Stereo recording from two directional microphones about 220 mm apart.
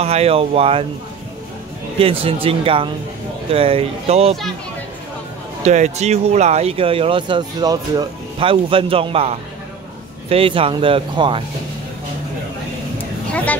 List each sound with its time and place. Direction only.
0.0 s speech: 30° right (ahead or behind)
2.0 s speech: 25° right (ahead or behind)
5.7 s speech: 30° right (ahead or behind)